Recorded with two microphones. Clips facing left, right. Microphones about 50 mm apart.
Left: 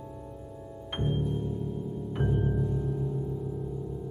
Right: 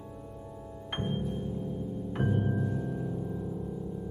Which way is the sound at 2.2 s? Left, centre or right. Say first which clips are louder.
Left 1 dB; centre.